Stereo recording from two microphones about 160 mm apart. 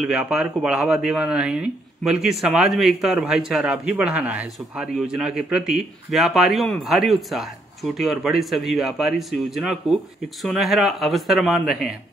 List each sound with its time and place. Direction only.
0.0 s speech: 5° right (ahead or behind)